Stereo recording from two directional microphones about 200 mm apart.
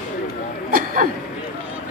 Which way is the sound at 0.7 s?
45° right (ahead or behind).